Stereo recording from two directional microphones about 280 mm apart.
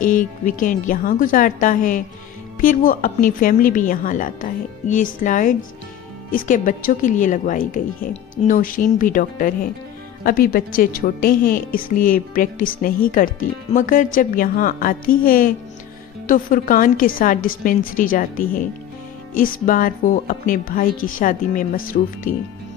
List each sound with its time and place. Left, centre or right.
0.0 s a woman's voice: left